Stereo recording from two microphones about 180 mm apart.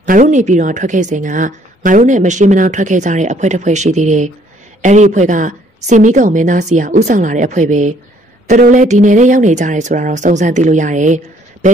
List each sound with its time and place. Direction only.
0.0 s a woman's voice: 45° right (ahead or behind)